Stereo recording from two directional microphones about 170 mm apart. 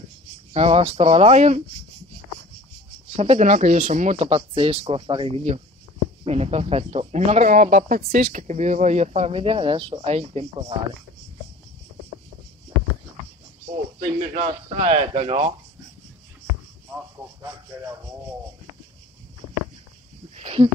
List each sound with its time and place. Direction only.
0.5 s speech: 35° right (ahead or behind)
3.2 s speech: 40° right (ahead or behind)
13.9 s speech: 45° right (ahead or behind)
20.3 s speech: 35° right (ahead or behind)